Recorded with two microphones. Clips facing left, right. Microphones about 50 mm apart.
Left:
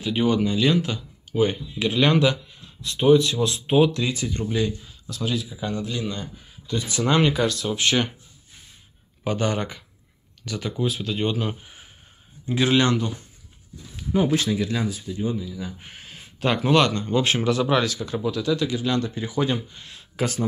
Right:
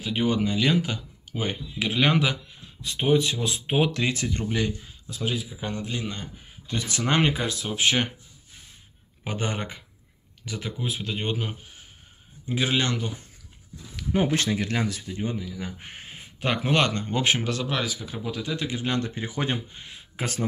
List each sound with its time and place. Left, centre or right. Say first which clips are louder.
0.0 s speech: left 3 dB; centre
3.9 s speech: left 1 dB; right
5.1 s speech: left 2 dB; right
6.7 s speech: left 3 dB; right
7.6 s speech: left 2 dB; centre
9.2 s speech: left 6 dB; right
12.4 s a man's voice: left 5 dB; centre
14.1 s speech: left 3 dB; right
16.3 s speech: left 4 dB; centre
16.9 s speech: left 2 dB; right
17.8 s speech: left 6 dB; centre; by 19.6 s right
19.7 s speech: even; right